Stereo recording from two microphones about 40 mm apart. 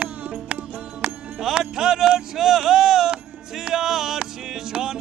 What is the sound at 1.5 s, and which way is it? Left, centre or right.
Music, centre.